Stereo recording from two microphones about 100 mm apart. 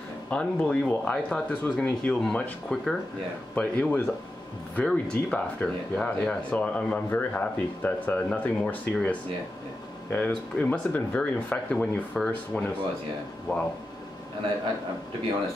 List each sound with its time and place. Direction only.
0.3 s speech: 10° left (ahead or behind)
2.7 s speech: 5° left (ahead or behind); by 13.6 s 25° left (ahead or behind)